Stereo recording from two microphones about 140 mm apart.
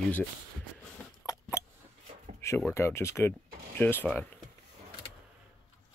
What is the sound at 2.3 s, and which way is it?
Speech, 15° left (ahead or behind).